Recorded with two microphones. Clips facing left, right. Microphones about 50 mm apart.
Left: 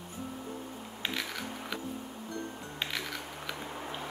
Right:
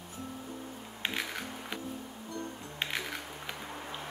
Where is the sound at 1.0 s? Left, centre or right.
Centre.